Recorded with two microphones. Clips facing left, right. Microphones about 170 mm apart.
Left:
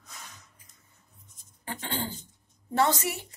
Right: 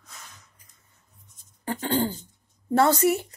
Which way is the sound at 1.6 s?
40° right (ahead or behind).